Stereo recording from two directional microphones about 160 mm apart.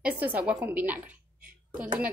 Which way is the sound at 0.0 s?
10° right (ahead or behind).